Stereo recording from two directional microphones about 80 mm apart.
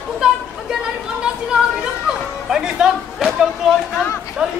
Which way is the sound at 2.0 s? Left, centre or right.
Centre.